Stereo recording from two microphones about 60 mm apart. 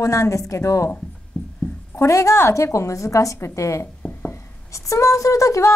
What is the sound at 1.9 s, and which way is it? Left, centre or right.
A woman's voice, left.